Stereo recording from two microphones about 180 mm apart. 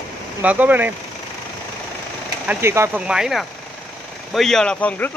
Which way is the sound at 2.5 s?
15° right (ahead or behind).